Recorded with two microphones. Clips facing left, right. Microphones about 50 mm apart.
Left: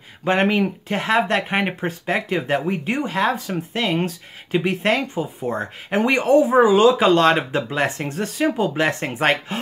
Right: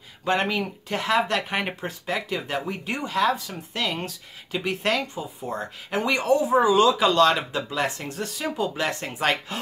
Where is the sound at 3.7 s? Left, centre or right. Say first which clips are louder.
Left 5 dB; left.